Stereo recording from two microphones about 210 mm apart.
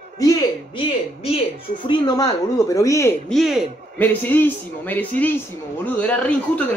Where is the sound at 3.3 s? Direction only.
Centre (ahead or behind).